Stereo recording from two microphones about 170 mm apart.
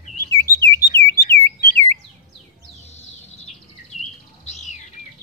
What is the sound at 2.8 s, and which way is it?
Bird, 40° left (ahead or behind).